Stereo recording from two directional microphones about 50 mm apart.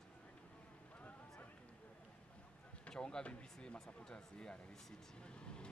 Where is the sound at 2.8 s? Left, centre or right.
Centre.